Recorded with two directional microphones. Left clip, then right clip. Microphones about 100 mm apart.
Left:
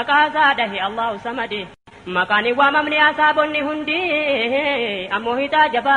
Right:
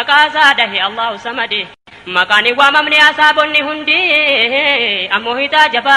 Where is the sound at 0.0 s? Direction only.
35° right (ahead or behind).